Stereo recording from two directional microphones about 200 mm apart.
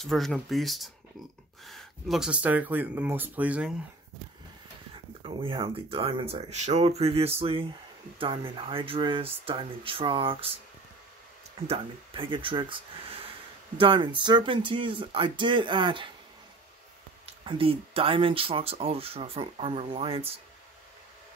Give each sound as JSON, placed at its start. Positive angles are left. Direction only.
{"t": 0.0, "sound": "speech", "side_deg": 0}
{"t": 5.2, "sound": "speech", "side_deg": -25}
{"t": 11.6, "sound": "speech", "side_deg": -25}
{"t": 17.3, "sound": "speech", "side_deg": -25}